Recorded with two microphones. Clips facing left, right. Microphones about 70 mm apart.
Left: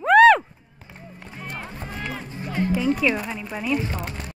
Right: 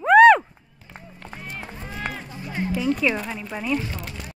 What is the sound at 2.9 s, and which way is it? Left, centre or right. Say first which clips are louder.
Speech: left 1 dB; centre.